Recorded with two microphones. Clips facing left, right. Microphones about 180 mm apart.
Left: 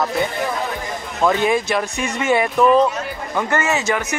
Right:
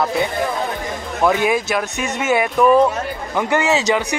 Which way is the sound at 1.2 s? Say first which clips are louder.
Even; 5° right (ahead or behind).